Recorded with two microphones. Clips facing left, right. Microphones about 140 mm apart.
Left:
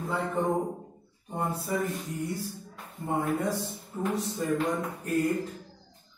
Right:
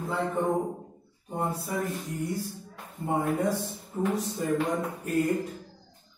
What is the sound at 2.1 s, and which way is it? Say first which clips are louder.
Speech: right 1 dB; 15° right (ahead or behind).